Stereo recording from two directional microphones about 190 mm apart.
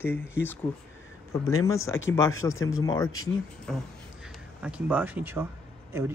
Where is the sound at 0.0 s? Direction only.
10° left (ahead or behind).